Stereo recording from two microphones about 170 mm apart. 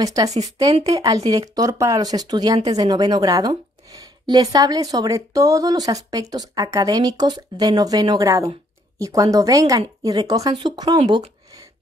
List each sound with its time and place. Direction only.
0.0 s speech: 20° right (ahead or behind)